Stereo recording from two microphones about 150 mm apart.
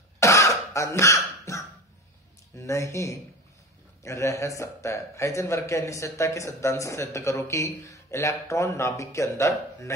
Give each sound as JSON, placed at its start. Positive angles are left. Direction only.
{"t": 0.2, "sound": "cough", "side_deg": 20}
{"t": 2.5, "sound": "a man's voice", "side_deg": 20}